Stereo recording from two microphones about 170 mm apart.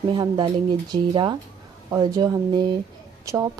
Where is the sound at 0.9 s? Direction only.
25° right (ahead or behind).